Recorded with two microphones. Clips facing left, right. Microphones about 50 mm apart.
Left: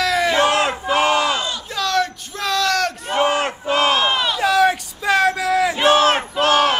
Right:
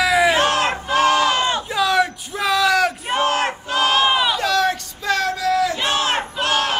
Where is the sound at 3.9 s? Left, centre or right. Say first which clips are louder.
Right 1 dB; centre.